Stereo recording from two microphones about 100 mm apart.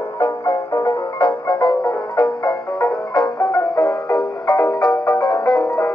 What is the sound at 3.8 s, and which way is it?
Music, 40° left (ahead or behind).